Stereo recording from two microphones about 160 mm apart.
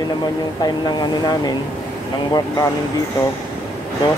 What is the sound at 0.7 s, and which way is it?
Speech, 25° left (ahead or behind).